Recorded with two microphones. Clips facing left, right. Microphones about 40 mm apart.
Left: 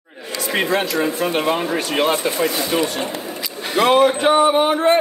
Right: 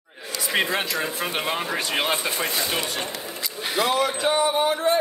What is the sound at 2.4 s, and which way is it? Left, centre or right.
Speech, left.